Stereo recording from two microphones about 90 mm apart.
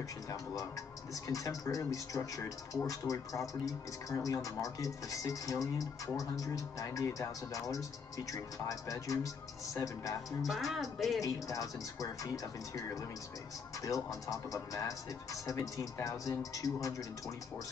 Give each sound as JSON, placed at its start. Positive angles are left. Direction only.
{"t": 1.2, "sound": "speech", "side_deg": 40}
{"t": 10.4, "sound": "speech", "side_deg": 0}
{"t": 11.1, "sound": "speech", "side_deg": 40}